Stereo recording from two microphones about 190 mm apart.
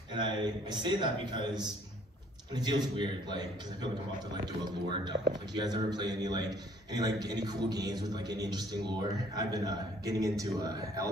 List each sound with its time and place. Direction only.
0.1 s a man's voice: 25° right (ahead or behind)